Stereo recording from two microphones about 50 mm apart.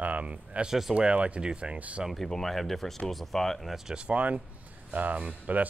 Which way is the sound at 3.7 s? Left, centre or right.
Centre.